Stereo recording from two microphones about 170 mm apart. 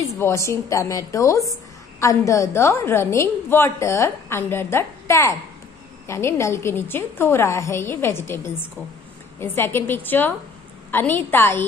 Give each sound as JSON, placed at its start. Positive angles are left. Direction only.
{"t": 0.2, "sound": "a woman's voice", "side_deg": 15}
{"t": 9.4, "sound": "a woman's voice", "side_deg": 15}